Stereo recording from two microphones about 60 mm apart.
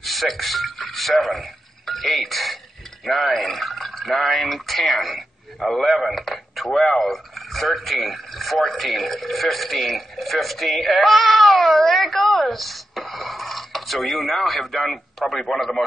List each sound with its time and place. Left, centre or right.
0.0 s speech: centre